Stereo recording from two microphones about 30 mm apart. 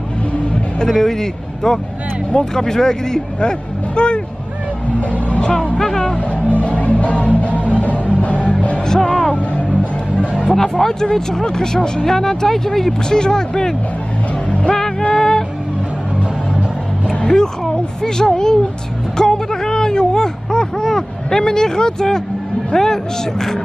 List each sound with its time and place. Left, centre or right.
0.8 s speech: centre
3.3 s speech: left
5.8 s music: centre
6.1 s music: left
8.8 s music: left
9.3 s music: left
10.5 s speech: centre
15.1 s music: centre
17.3 s speech: left
19.1 s a sound: left
22.7 s speech: left